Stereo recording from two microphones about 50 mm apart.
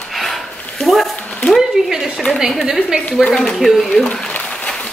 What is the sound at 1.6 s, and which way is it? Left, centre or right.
A woman's voice, centre.